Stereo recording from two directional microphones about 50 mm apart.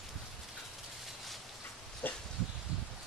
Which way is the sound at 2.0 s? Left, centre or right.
Left.